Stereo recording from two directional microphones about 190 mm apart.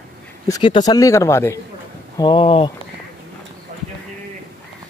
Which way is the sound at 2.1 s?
25° left (ahead or behind).